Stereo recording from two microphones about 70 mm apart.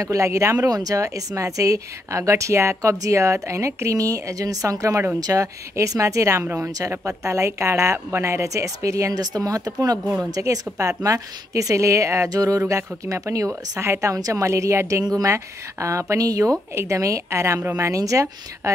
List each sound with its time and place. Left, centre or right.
0.0 s speech: right
0.7 s speech: right
6.4 s a woman's voice: right
7.1 s speech: right
9.2 s speech: right
12.3 s speech: right